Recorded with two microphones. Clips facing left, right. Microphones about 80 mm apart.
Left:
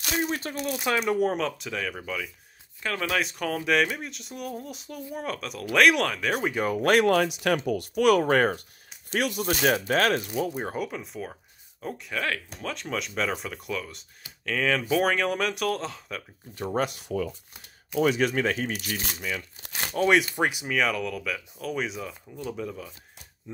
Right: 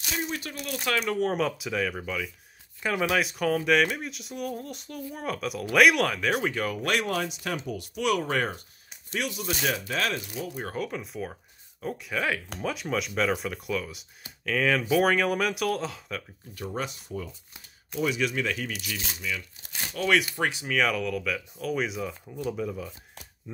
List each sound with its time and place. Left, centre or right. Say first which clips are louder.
0.2 s speech: left 4 dB; left
0.7 s speech: left 2 dB; centre
1.3 s speech: right 1 dB; centre
2.8 s speech: right 2 dB; centre
6.5 s speech: left 3 dB; left
6.8 s speech: left 9 dB; left
7.2 s speech: left 7 dB; left
10.5 s speech: left 3 dB; left
10.8 s speech: even; centre
16.6 s speech: left 6 dB; left
18.0 s speech: left 4 dB; left
19.6 s crumpling: left 8 dB; left
20.3 s speech: left 2 dB; centre
20.7 s speech: even; centre